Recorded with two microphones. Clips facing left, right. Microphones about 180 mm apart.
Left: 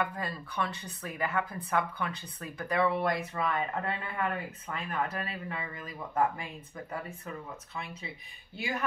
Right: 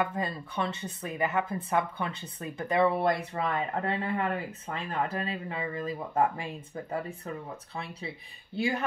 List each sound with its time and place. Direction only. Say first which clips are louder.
0.0 s speech: right 3 dB; 25° right (ahead or behind)